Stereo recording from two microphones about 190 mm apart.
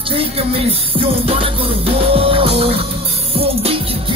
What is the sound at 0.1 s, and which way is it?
Music, 30° right (ahead or behind).